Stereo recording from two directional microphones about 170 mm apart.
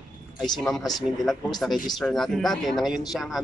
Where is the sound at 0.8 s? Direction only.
25° left (ahead or behind).